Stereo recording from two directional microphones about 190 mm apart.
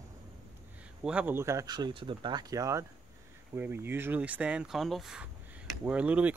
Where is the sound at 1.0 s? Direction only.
5° right (ahead or behind).